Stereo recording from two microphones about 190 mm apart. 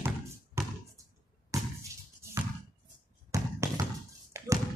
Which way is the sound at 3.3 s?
15° right (ahead or behind).